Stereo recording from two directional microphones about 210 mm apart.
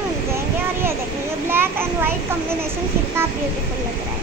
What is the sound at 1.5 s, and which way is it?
Speech, 10° right (ahead or behind).